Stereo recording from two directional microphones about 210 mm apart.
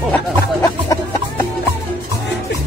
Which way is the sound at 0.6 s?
15° left (ahead or behind).